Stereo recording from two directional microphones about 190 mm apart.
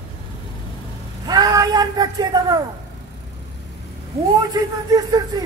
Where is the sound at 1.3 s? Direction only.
20° right (ahead or behind).